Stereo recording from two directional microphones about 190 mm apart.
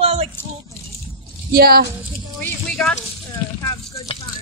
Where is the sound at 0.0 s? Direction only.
30° right (ahead or behind).